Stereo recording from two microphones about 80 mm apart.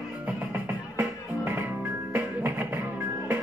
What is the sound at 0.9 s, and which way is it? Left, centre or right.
Music, right.